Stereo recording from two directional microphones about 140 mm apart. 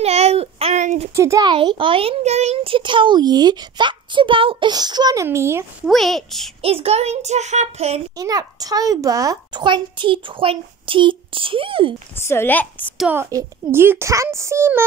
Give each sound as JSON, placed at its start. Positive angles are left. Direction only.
{"t": 0.0, "sound": "a sound", "side_deg": -50}
{"t": 1.1, "sound": "a child's voice", "side_deg": -20}
{"t": 5.9, "sound": "a woman's voice", "side_deg": 0}
{"t": 6.6, "sound": "a child's voice", "side_deg": -45}
{"t": 8.2, "sound": "a child's voice", "side_deg": -25}
{"t": 12.2, "sound": "a woman's voice", "side_deg": 15}
{"t": 13.1, "sound": "a child's voice", "side_deg": -20}